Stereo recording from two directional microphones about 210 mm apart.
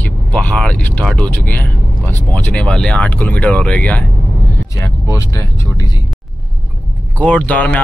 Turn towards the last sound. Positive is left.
turn(degrees=5)  # may be behind; listen again after turning